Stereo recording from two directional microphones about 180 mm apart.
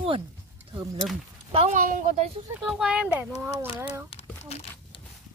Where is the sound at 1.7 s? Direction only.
50° right (ahead or behind).